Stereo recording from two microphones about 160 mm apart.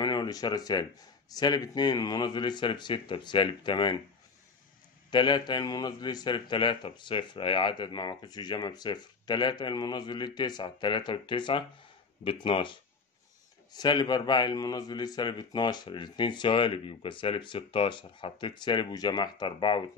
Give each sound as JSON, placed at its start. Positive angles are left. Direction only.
{"t": 0.0, "sound": "a man's voice", "side_deg": 25}
{"t": 5.1, "sound": "a man's voice", "side_deg": 30}